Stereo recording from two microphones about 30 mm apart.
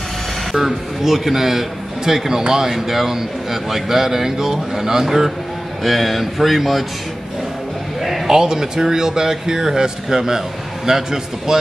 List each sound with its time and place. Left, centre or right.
0.5 s a man's voice: centre
5.9 s speech: centre
8.3 s a man's voice: centre